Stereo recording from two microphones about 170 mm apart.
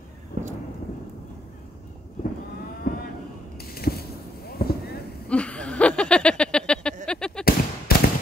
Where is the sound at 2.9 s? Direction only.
55° left (ahead or behind).